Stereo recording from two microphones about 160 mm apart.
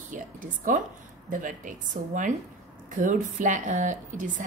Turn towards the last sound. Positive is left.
turn(degrees=-55)  # may be behind; listen again after turning